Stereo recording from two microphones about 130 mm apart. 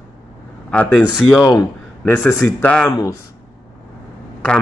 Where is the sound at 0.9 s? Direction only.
5° right (ahead or behind).